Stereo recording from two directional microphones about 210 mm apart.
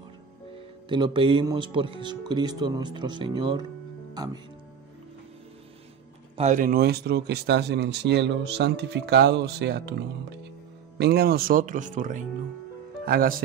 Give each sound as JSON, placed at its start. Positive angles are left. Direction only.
{"t": 0.8, "sound": "speech", "side_deg": -20}
{"t": 6.3, "sound": "speech", "side_deg": -35}